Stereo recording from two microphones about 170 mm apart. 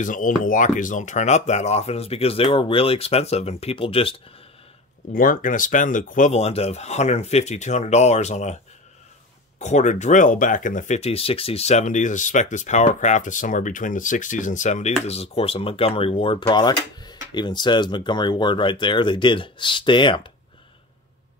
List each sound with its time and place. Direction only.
0.0 s speech: 50° left (ahead or behind); by 4.1 s 35° left (ahead or behind)
5.1 s speech: 55° left (ahead or behind)
9.6 s speech: 45° left (ahead or behind); by 20.3 s 30° left (ahead or behind)